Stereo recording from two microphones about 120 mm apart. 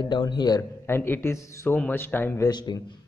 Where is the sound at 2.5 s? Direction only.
35° left (ahead or behind).